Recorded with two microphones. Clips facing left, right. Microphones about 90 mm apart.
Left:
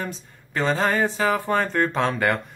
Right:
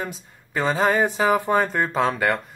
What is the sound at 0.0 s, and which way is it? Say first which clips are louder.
Speech: even; 5° right (ahead or behind).